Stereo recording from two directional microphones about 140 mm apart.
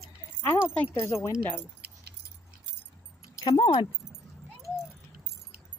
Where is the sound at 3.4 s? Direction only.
35° left (ahead or behind).